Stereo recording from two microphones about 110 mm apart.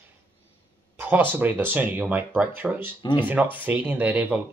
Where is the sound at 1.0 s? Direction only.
15° right (ahead or behind).